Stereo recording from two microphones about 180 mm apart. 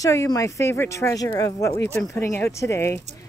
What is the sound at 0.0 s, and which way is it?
Speech, 15° left (ahead or behind).